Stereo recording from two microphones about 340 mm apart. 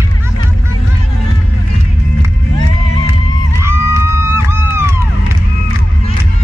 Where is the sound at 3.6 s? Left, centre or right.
Centre.